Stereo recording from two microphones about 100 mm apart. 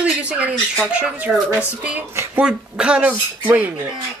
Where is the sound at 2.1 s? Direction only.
25° right (ahead or behind).